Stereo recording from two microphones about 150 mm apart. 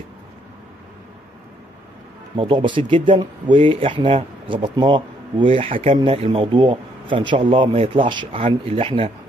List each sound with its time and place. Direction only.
2.3 s speech: 35° right (ahead or behind)